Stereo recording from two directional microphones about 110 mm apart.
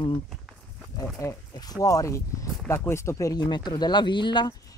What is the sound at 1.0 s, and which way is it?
Speech, 25° left (ahead or behind).